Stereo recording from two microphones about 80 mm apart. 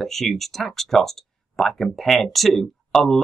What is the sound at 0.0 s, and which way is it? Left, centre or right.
Speech, centre.